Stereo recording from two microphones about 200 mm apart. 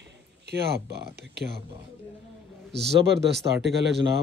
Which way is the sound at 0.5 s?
55° right (ahead or behind).